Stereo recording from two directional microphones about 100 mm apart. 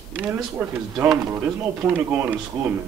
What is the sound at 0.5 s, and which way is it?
Speech, 25° right (ahead or behind).